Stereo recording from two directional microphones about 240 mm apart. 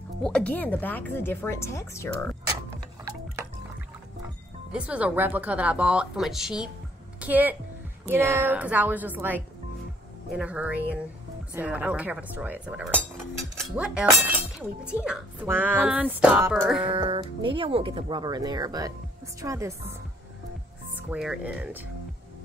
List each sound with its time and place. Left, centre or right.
0.2 s speech: centre
4.7 s a woman's voice: centre
14.1 s chink: centre
15.0 s speech: centre
16.8 s speech: right; by 21.8 s centre